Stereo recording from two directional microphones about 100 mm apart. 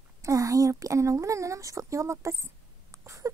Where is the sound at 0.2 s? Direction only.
30° right (ahead or behind).